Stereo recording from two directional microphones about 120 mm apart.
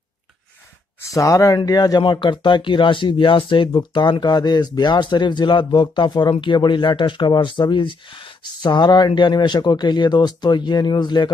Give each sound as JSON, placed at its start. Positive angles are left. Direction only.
{"t": 1.1, "sound": "speech", "side_deg": 25}